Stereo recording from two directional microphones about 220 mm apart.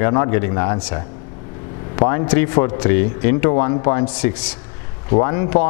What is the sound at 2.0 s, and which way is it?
Speech, 20° left (ahead or behind).